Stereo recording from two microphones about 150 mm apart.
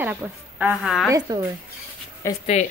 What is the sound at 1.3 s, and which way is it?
Speech, 25° right (ahead or behind).